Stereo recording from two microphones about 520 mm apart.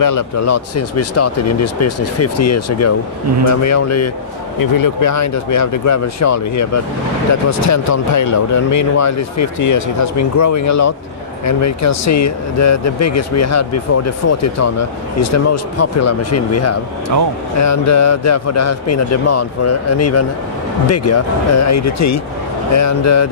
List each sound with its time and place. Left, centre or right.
0.0 s speech: left